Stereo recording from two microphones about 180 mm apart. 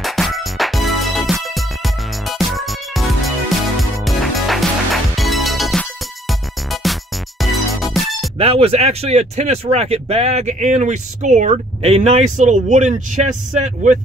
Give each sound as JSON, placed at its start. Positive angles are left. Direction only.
{"t": 0.0, "sound": "music", "side_deg": 0}
{"t": 8.4, "sound": "speech", "side_deg": -35}